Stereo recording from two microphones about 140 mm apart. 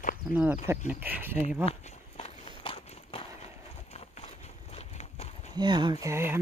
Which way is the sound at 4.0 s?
50° left (ahead or behind).